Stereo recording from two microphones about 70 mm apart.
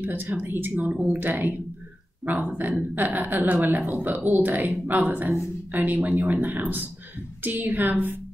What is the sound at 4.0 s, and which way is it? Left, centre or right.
Speech, right.